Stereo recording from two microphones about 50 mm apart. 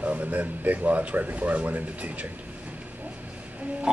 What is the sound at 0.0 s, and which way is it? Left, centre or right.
Speech, right.